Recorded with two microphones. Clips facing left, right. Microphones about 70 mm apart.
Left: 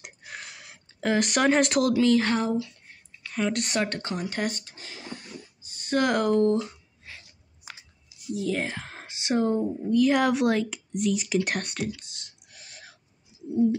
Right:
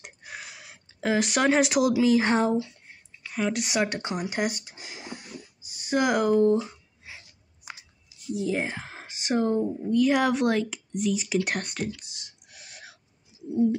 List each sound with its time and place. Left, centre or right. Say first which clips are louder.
0.0 s a sound: even; centre
2.2 s speech: right 2 dB; right
2.9 s a sound: even; centre
8.4 s speech: right 1 dB; centre
12.0 s whispering: even; centre
13.5 s bird: left 1 dB; centre